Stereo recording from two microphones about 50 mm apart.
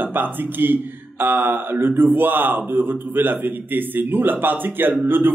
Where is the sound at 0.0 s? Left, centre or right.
Right.